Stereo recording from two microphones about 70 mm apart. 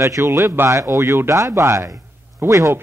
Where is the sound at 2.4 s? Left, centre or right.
Right.